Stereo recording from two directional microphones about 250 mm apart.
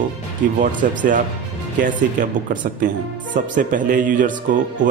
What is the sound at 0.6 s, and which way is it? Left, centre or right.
Speech, right.